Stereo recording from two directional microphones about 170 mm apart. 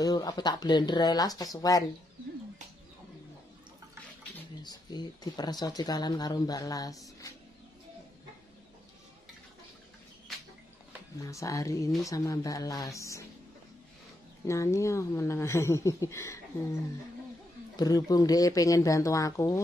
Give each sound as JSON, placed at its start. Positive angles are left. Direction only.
{"t": 0.0, "sound": "speech", "side_deg": 20}
{"t": 4.6, "sound": "speech", "side_deg": 25}
{"t": 11.1, "sound": "speech", "side_deg": 20}
{"t": 14.4, "sound": "speech", "side_deg": 15}
{"t": 17.7, "sound": "speech", "side_deg": 20}